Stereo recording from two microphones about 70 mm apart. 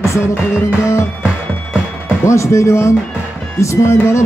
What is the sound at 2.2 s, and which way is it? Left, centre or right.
Speech, left.